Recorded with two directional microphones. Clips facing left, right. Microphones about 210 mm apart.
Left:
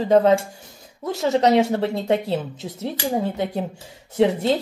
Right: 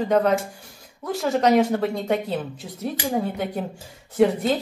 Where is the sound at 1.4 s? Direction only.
25° left (ahead or behind).